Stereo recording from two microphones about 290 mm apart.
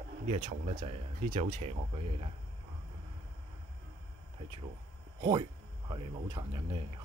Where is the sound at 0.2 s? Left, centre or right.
Right.